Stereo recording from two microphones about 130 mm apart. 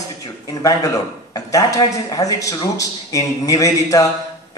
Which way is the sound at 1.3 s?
25° left (ahead or behind).